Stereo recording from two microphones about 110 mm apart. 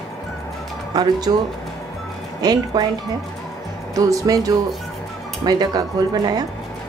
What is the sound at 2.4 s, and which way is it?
Speech, 40° right (ahead or behind).